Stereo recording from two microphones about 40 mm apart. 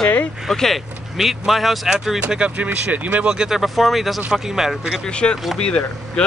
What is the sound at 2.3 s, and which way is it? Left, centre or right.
Speech, right.